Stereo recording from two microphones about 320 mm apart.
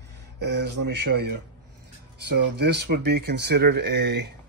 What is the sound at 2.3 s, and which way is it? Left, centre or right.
Speech, right.